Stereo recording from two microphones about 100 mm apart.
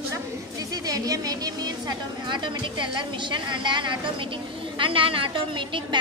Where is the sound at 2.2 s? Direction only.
50° right (ahead or behind).